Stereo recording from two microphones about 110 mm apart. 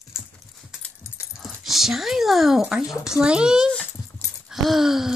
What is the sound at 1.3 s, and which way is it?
Dog, centre (ahead or behind).